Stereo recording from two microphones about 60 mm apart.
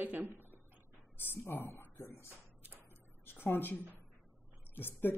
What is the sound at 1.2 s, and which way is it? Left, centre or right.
Speech, left.